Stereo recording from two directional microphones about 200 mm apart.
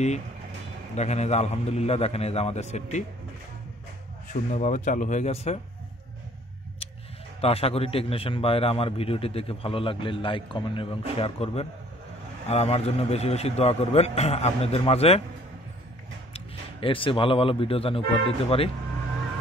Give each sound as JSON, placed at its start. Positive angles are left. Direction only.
{"t": 0.9, "sound": "a man's voice", "side_deg": 35}
{"t": 4.3, "sound": "a man's voice", "side_deg": 40}
{"t": 7.4, "sound": "a man's voice", "side_deg": 30}
{"t": 16.3, "sound": "speech", "side_deg": 25}